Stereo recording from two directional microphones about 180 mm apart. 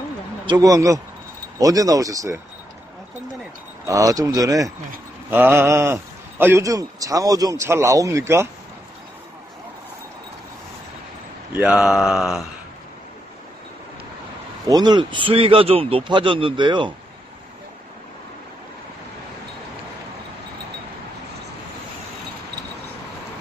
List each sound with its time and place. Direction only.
0.5 s a man's voice: 20° right (ahead or behind)
3.8 s a man's voice: 20° right (ahead or behind)
11.5 s mantra: 5° right (ahead or behind)
14.7 s a man's voice: 25° right (ahead or behind)